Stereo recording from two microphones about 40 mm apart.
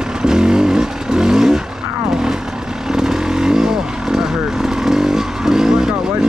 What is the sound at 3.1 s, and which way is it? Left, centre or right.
Vehicle, centre.